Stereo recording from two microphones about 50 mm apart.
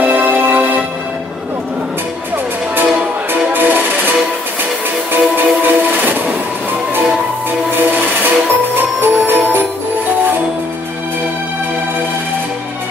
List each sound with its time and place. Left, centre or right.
0.0 s music: right
3.5 s music: right
5.1 s music: right
7.7 s train: right
8.7 s music: right